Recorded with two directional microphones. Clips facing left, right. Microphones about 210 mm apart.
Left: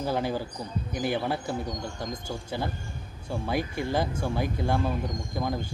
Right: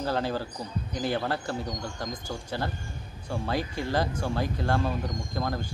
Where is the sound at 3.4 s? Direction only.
20° left (ahead or behind).